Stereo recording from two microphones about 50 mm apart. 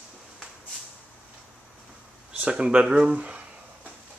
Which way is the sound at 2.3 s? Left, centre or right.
Right.